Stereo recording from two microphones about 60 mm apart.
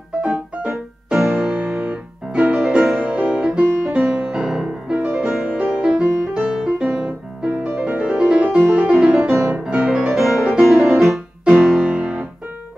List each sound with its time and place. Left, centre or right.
0.2 s music: centre
1.5 s music: right
2.6 s music: centre
3.0 s music: right
8.1 s music: centre
11.9 s music: centre